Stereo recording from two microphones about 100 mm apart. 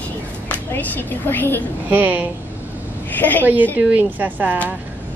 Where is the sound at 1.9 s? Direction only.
20° right (ahead or behind).